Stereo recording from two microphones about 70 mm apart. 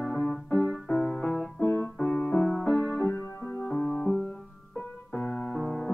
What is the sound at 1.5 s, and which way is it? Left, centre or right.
Music, left.